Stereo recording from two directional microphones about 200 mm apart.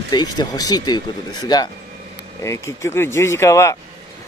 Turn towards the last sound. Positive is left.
turn(degrees=15)  # may be behind; listen again after turning